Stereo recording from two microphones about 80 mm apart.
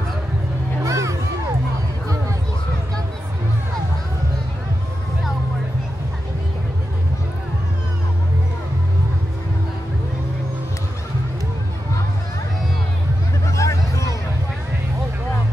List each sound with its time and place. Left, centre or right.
0.8 s music: right
13.5 s hubbub: left